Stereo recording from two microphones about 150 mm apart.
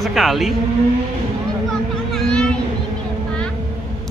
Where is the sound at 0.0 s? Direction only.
Centre (ahead or behind).